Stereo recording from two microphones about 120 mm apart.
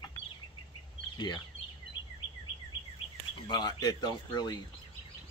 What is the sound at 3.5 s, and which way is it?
Speech, 35° left (ahead or behind).